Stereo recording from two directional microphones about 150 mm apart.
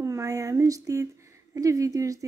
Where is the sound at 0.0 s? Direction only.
20° right (ahead or behind).